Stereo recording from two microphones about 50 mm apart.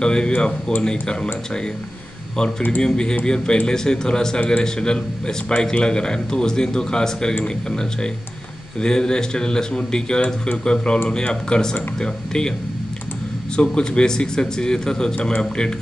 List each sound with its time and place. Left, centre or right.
0.0 s a man's voice: centre
2.8 s a man's voice: centre
4.4 s a man's voice: left
13.6 s a man's voice: centre